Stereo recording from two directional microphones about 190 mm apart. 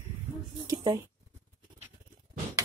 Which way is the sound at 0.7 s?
20° right (ahead or behind).